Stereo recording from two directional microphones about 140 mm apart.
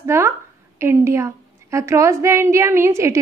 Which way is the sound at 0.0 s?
20° right (ahead or behind).